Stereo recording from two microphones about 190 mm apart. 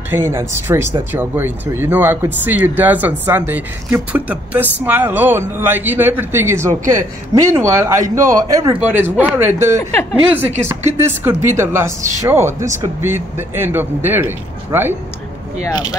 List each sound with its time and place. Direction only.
0.1 s speech: 10° right (ahead or behind)
11.0 s speech: 15° right (ahead or behind)
15.6 s speech: 20° left (ahead or behind)